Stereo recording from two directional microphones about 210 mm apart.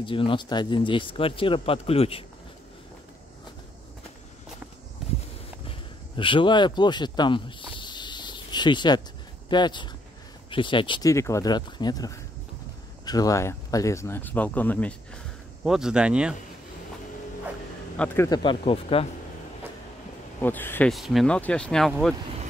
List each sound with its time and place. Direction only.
0.0 s speech: 25° left (ahead or behind)
5.7 s a sound: 25° left (ahead or behind)
9.5 s speech: 20° left (ahead or behind); by 16.3 s 5° right (ahead or behind)
17.9 s speech: 10° left (ahead or behind); by 19.0 s 25° left (ahead or behind)
20.3 s speech: 10° left (ahead or behind)